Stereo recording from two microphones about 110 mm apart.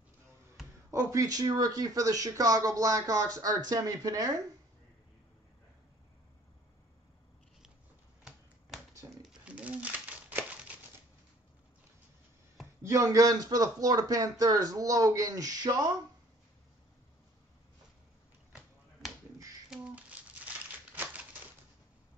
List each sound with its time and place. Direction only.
0.9 s speech: 30° right (ahead or behind)
8.2 s finger snapping: 5° right (ahead or behind)
9.3 s crumpling: 10° right (ahead or behind)
12.8 s speech: 30° right (ahead or behind)
19.7 s a sound: 10° right (ahead or behind)
20.9 s typewriter: 15° right (ahead or behind)